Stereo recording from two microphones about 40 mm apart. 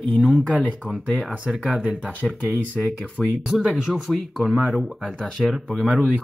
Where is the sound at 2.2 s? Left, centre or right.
Centre.